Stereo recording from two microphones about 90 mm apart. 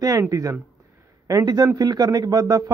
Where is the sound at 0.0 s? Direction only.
40° right (ahead or behind).